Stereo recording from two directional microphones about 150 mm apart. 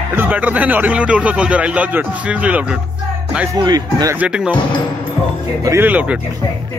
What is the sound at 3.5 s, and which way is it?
Speech, 25° right (ahead or behind).